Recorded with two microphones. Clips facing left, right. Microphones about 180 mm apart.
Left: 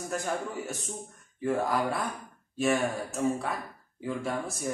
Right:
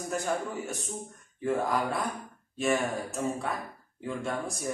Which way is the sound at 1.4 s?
Centre (ahead or behind).